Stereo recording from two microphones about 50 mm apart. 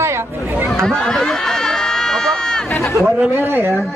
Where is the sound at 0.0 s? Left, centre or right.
Right.